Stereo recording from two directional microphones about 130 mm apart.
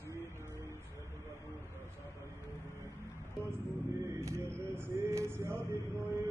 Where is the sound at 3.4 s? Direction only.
20° right (ahead or behind).